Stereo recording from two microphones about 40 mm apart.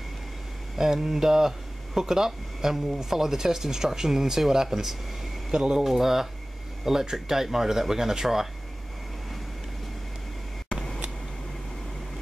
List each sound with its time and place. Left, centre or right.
0.7 s speech: centre